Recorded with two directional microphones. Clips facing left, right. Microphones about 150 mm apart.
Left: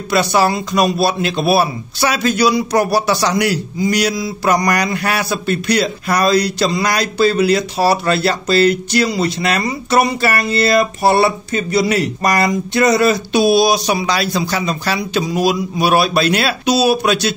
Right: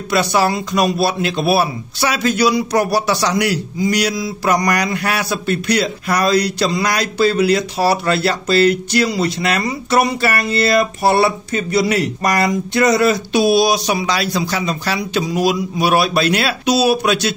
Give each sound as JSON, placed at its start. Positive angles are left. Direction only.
{"t": 0.1, "sound": "a man's voice", "side_deg": 30}